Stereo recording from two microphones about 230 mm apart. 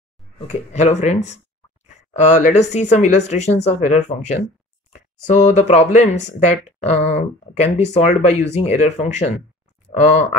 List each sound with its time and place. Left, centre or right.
0.5 s speech: left